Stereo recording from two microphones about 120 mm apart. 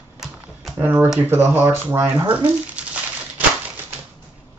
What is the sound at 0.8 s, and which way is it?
Speech, 20° right (ahead or behind).